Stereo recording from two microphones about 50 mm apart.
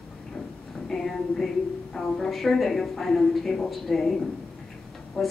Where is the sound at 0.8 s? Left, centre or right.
Centre.